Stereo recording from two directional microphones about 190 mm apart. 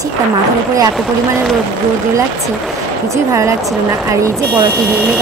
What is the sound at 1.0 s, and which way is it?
Speech, centre (ahead or behind).